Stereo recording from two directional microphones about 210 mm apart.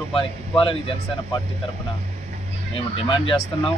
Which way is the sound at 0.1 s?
25° left (ahead or behind).